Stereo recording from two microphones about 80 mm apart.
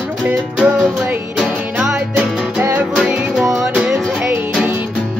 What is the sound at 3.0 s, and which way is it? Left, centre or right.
Music, centre.